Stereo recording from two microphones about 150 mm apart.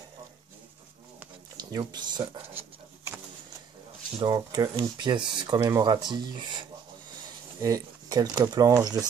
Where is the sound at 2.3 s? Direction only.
15° right (ahead or behind).